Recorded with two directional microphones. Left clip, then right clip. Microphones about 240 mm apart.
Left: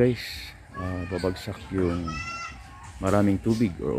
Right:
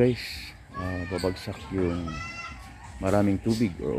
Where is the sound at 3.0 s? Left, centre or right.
Centre.